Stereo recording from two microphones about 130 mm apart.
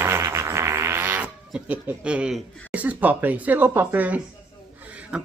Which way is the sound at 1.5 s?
10° right (ahead or behind).